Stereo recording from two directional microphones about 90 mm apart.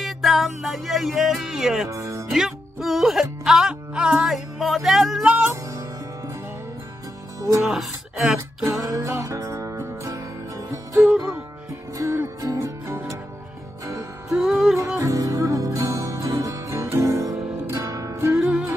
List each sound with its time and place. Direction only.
0.0 s music: centre (ahead or behind)
1.9 s speech: 35° right (ahead or behind)
2.3 s music: 5° right (ahead or behind)
7.6 s speech: 5° right (ahead or behind)
8.6 s music: 40° right (ahead or behind)
11.0 s music: 5° right (ahead or behind)
12.0 s music: 30° right (ahead or behind)
14.3 s music: 5° right (ahead or behind)
14.8 s music: 35° right (ahead or behind)
17.3 s music: 5° right (ahead or behind)
17.6 s music: 40° right (ahead or behind)
18.3 s music: 5° right (ahead or behind)